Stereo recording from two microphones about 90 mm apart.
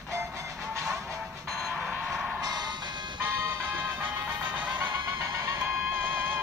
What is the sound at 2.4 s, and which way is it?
Music, 50° right (ahead or behind).